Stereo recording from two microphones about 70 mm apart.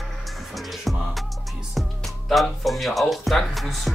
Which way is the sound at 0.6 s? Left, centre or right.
Centre.